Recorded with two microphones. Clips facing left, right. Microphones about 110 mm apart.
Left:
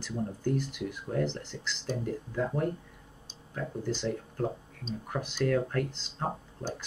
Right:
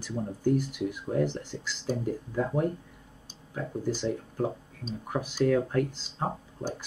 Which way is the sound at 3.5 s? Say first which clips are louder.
Right 2 dB; 10° right (ahead or behind).